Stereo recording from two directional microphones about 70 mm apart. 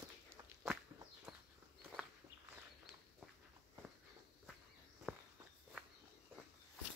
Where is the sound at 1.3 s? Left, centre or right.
Centre.